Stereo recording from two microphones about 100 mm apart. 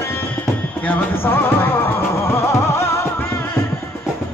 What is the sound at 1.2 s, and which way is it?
Music, 20° left (ahead or behind).